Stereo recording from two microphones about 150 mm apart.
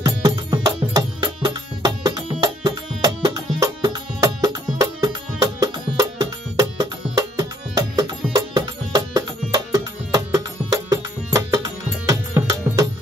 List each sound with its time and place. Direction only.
0.0 s music: 25° right (ahead or behind)